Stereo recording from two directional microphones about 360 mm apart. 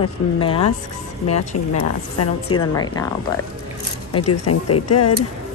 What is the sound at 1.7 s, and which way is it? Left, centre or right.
Speech, left.